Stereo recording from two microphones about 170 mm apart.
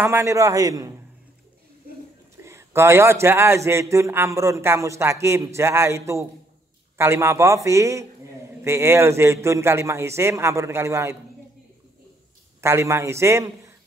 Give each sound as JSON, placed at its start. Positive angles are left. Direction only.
{"t": 0.0, "sound": "a man's voice", "side_deg": -15}
{"t": 2.4, "sound": "a man's voice", "side_deg": -15}
{"t": 12.6, "sound": "a man's voice", "side_deg": -15}